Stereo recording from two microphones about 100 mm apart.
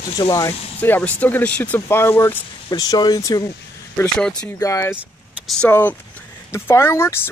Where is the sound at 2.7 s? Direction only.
40° left (ahead or behind).